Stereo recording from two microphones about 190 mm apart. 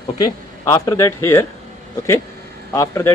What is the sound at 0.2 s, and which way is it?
Speech, 20° left (ahead or behind).